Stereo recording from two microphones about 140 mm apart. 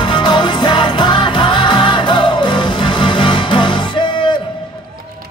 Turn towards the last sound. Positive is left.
turn(degrees=35)  # may be behind; listen again after turning